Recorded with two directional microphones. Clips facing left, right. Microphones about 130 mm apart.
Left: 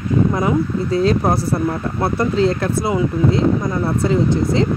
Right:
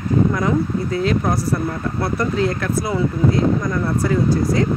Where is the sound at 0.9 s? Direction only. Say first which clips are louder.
Left 4 dB; 30° left (ahead or behind).